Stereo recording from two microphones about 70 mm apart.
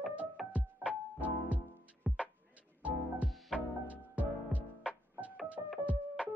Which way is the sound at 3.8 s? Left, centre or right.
Right.